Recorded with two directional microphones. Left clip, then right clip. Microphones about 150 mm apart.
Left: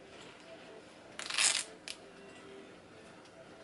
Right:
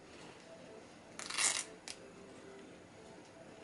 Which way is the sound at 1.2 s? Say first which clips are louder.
Left 5 dB; centre (ahead or behind).